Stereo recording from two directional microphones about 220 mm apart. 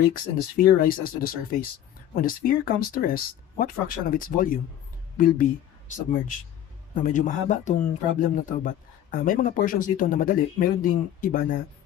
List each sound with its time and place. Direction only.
0.1 s speech: 40° left (ahead or behind)